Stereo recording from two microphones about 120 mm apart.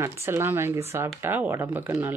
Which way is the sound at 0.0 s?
20° right (ahead or behind).